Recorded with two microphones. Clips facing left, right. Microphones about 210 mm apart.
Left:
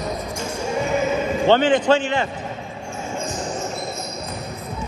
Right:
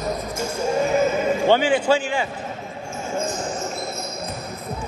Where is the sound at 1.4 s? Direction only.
10° right (ahead or behind).